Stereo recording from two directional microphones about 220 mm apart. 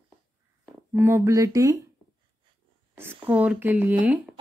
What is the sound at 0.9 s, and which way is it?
Speech, 10° right (ahead or behind).